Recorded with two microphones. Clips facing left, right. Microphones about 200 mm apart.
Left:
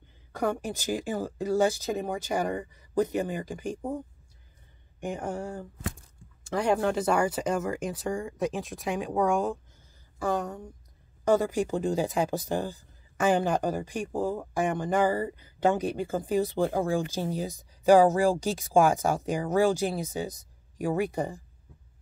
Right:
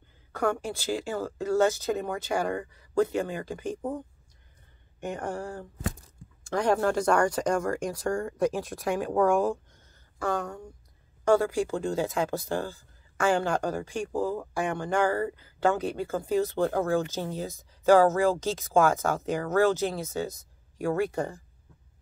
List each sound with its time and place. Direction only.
0.4 s speech: 15° left (ahead or behind)
5.1 s speech: 5° left (ahead or behind)
10.2 s speech: 15° left (ahead or behind)